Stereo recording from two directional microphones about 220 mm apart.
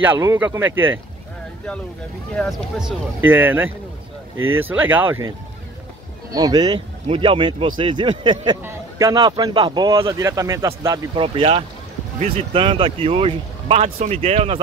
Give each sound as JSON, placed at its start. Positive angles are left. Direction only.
{"t": 0.0, "sound": "speech", "side_deg": -10}
{"t": 2.3, "sound": "speech", "side_deg": 0}
{"t": 3.2, "sound": "speech", "side_deg": -10}
{"t": 4.4, "sound": "speech", "side_deg": -70}
{"t": 4.6, "sound": "speech", "side_deg": -10}
{"t": 6.3, "sound": "speech", "side_deg": -15}
{"t": 11.2, "sound": "speech", "side_deg": -25}